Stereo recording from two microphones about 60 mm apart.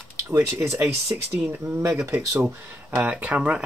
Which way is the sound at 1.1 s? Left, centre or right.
Right.